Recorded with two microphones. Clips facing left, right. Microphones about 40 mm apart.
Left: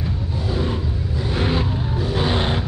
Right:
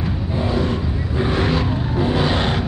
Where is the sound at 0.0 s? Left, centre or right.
Right.